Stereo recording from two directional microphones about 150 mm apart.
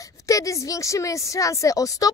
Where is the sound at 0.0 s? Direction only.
20° left (ahead or behind).